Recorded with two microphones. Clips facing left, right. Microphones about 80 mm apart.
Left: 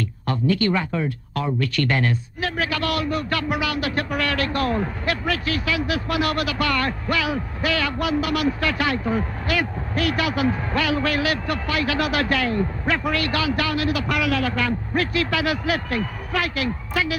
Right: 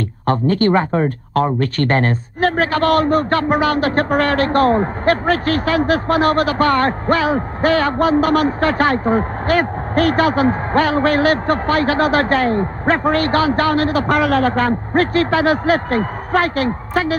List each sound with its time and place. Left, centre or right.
0.3 s speech: right